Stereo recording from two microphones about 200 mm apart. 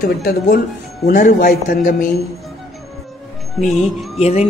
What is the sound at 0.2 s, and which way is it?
Speech, 45° left (ahead or behind).